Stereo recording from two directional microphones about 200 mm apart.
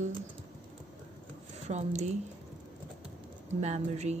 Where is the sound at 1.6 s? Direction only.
35° right (ahead or behind).